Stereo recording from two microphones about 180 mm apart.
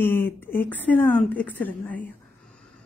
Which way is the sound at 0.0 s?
10° left (ahead or behind).